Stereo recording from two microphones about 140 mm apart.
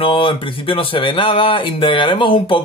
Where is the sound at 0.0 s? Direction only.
40° left (ahead or behind).